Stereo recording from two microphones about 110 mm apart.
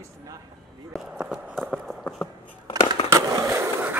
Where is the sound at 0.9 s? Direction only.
10° right (ahead or behind).